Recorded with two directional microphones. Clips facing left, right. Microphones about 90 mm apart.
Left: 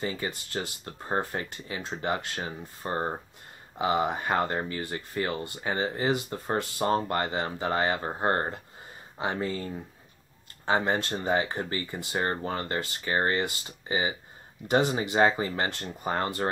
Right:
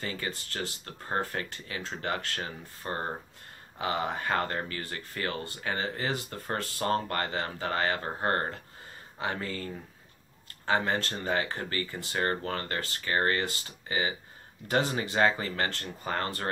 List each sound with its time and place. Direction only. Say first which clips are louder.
0.0 s speech: left 3 dB; 20° left (ahead or behind)